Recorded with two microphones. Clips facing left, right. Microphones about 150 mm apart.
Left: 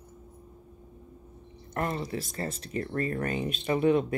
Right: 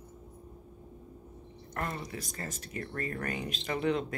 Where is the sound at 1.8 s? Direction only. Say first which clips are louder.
Left 6 dB; 30° left (ahead or behind).